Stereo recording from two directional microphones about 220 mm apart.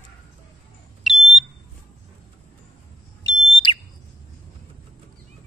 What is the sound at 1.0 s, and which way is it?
Smoke detector, centre (ahead or behind).